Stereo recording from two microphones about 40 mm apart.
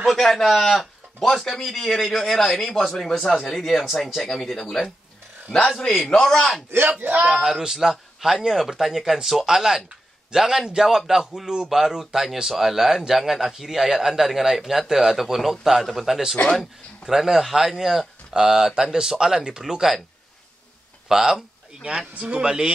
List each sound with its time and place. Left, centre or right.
0.2 s a man's voice: centre
6.1 s a man's voice: centre
6.7 s speech: right
7.2 s speech: right
7.4 s a man's voice: centre
16.4 s speech: left
17.0 s a man's voice: centre
18.3 s a man's voice: centre
21.1 s a man's voice: centre